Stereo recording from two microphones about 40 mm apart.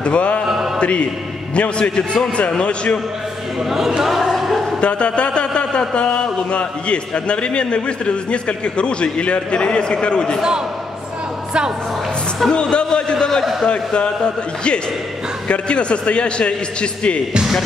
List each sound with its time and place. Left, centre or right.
0.0 s a man's voice: left
4.0 s a sound: centre
4.7 s a man's voice: left
12.4 s a man's voice: left